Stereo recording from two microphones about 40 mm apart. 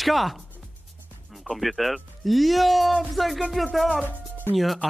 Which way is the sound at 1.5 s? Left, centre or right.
Centre.